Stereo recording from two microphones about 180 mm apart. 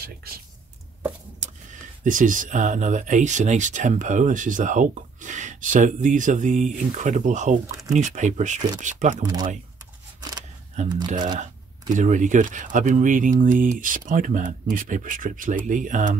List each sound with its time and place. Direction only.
0.0 s speech: 60° right (ahead or behind)
1.4 s speech: 45° right (ahead or behind)
9.2 s speech: 20° right (ahead or behind)
11.9 s speech: 45° right (ahead or behind)